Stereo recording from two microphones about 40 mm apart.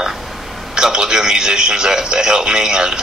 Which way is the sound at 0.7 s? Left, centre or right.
Centre.